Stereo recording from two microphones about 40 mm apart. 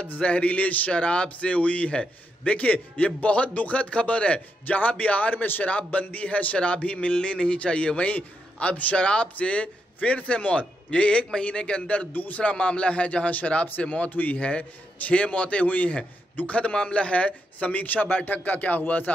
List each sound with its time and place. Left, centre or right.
0.2 s a man's voice: left
5.4 s a man's voice: left
5.7 s a man's voice: left
12.1 s a man's voice: left
12.4 s a man's voice: left
14.1 s a man's voice: left
14.4 s a man's voice: left